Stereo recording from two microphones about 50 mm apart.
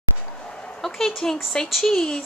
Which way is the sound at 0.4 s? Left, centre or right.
Left.